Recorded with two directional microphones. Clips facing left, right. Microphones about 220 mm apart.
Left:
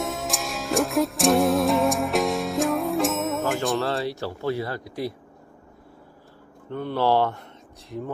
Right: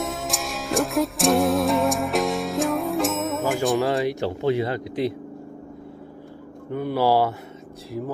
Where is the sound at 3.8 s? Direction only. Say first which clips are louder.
Right 4 dB; 15° right (ahead or behind).